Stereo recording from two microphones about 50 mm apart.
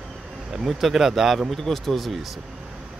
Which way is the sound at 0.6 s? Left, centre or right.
Centre.